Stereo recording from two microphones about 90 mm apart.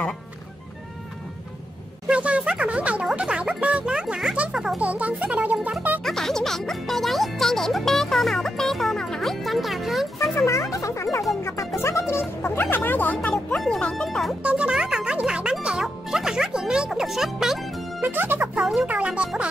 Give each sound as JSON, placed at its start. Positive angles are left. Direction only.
{"t": 2.0, "sound": "speech", "side_deg": -15}
{"t": 3.6, "sound": "music", "side_deg": -10}
{"t": 4.8, "sound": "speech", "side_deg": -15}
{"t": 6.0, "sound": "music", "side_deg": 5}
{"t": 10.3, "sound": "music", "side_deg": 35}
{"t": 11.4, "sound": "speech", "side_deg": 30}
{"t": 13.3, "sound": "speech", "side_deg": 5}
{"t": 14.4, "sound": "music", "side_deg": -15}
{"t": 18.0, "sound": "speech", "side_deg": -25}
{"t": 18.5, "sound": "music", "side_deg": -5}
{"t": 18.8, "sound": "speech", "side_deg": -15}